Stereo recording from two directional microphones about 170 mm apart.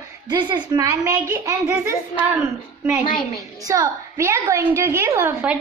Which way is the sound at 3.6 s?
20° right (ahead or behind).